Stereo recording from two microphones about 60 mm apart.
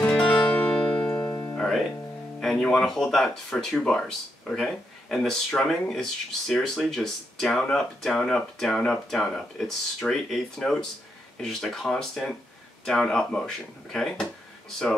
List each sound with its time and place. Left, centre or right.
0.1 s music: centre
1.6 s music: centre
2.7 s speech: centre